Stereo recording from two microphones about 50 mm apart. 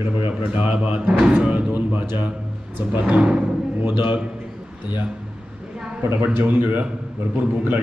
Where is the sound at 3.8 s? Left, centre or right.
Right.